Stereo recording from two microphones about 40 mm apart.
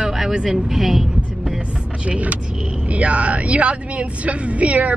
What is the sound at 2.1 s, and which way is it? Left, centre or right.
A woman's voice, right.